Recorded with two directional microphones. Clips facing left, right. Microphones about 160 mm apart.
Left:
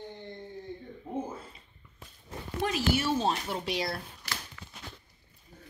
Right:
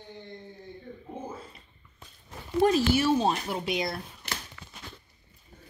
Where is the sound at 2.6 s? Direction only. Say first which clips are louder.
Right 9 dB; 45° right (ahead or behind).